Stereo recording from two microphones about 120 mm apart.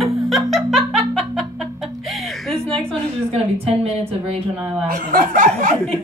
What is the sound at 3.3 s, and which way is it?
Speech, 55° right (ahead or behind).